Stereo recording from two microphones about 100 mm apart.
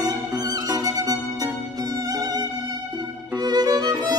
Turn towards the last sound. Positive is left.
turn(degrees=-40)  # may be behind; listen again after turning